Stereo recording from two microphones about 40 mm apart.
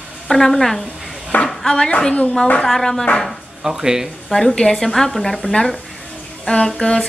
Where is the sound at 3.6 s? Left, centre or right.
Centre.